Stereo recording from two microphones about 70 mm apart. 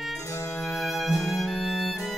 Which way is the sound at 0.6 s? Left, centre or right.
Centre.